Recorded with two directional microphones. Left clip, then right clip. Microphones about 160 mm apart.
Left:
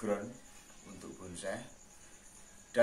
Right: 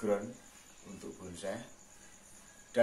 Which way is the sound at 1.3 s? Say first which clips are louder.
Even; centre (ahead or behind).